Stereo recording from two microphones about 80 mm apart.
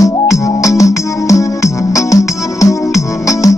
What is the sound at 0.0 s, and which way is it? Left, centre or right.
Music, left.